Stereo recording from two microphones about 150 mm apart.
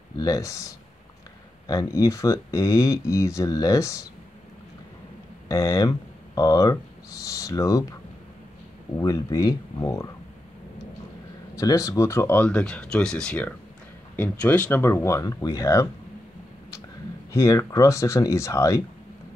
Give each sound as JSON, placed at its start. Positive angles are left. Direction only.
{"t": 0.2, "sound": "speech", "side_deg": 20}
{"t": 5.5, "sound": "speech", "side_deg": 20}
{"t": 8.9, "sound": "speech", "side_deg": 25}
{"t": 11.5, "sound": "speech", "side_deg": 20}
{"t": 17.3, "sound": "speech", "side_deg": 20}